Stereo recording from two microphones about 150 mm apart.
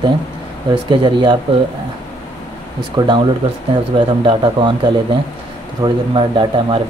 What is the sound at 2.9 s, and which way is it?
Speech, 30° right (ahead or behind).